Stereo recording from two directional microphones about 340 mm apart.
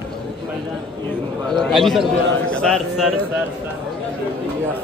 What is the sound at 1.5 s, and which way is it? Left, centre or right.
A man's voice, centre.